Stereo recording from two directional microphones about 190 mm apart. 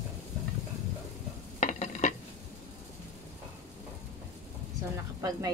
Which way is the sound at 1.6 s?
40° left (ahead or behind).